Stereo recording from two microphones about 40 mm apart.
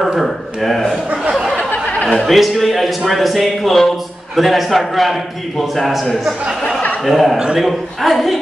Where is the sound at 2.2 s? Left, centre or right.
Centre.